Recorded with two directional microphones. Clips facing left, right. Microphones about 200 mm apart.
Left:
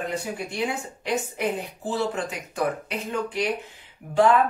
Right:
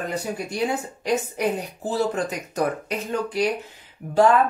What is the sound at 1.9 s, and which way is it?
Speech, 40° right (ahead or behind).